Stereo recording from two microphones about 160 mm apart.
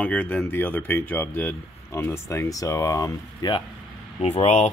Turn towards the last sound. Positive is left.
turn(degrees=40)  # may be behind; listen again after turning